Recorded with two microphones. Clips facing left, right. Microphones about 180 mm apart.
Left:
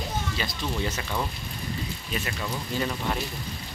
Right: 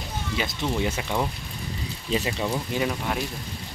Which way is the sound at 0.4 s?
15° right (ahead or behind).